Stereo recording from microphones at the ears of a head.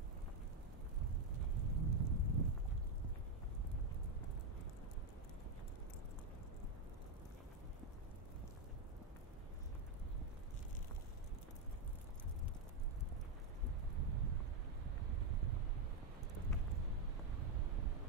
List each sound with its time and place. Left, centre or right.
1.3 s thunder: right
13.9 s wind: right